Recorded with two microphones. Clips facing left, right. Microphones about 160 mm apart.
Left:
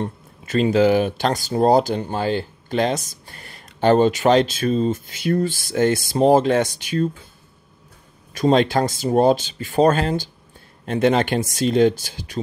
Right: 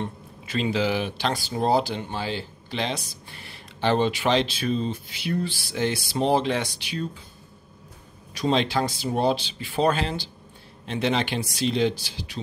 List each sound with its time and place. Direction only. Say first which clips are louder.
0.0 s speech: left 5 dB; 45° left (ahead or behind)
8.3 s speech: left 7 dB; 50° left (ahead or behind)